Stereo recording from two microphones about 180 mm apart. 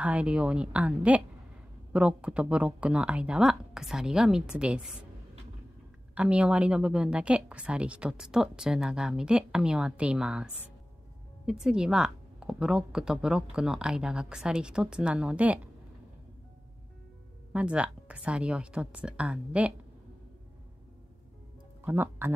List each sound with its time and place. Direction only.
0.0 s a woman's voice: 5° right (ahead or behind)
6.1 s a woman's voice: 5° right (ahead or behind)
17.5 s a woman's voice: 5° right (ahead or behind)
21.8 s speech: 10° right (ahead or behind)